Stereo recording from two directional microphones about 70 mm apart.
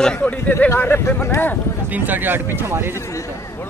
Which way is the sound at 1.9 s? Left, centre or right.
Right.